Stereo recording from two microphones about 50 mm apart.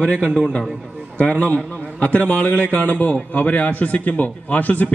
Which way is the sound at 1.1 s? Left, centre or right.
Left.